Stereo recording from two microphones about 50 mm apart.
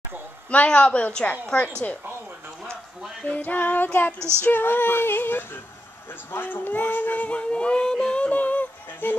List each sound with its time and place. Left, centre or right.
0.7 s a woman's voice: left
3.3 s speech: left
4.4 s female singing: left
6.3 s speech: left
7.3 s music: left
8.3 s a sound: left